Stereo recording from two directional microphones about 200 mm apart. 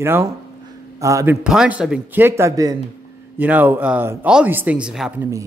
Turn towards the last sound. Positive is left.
turn(degrees=-5)  # may be behind; listen again after turning